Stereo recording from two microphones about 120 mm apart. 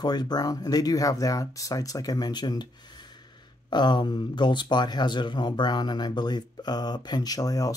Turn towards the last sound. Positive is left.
turn(degrees=30)  # may be behind; listen again after turning